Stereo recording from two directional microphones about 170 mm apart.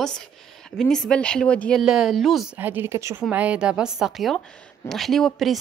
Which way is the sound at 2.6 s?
10° right (ahead or behind).